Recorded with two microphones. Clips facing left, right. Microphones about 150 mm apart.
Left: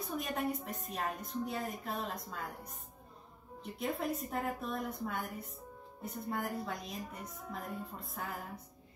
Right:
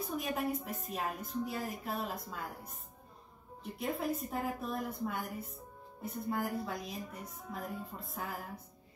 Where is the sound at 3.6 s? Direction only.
Centre (ahead or behind).